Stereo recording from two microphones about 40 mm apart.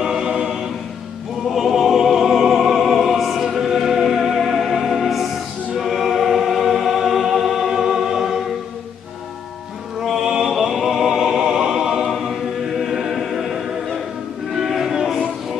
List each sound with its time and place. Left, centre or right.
0.0 s choir: centre
1.5 s music: centre
5.8 s choir: centre
10.1 s music: centre
12.0 s choir: centre
12.8 s choir: centre
14.5 s a sound: centre